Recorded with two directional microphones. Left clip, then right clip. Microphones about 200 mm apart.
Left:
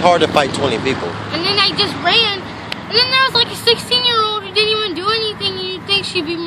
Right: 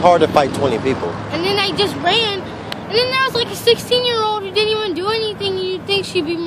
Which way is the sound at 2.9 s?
Centre (ahead or behind).